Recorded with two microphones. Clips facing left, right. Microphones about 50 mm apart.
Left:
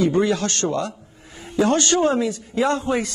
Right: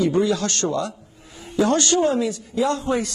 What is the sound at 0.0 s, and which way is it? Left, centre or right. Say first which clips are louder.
A man's voice: left 1 dB; left.